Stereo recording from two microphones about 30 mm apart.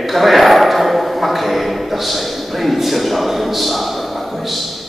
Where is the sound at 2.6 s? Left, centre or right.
Centre.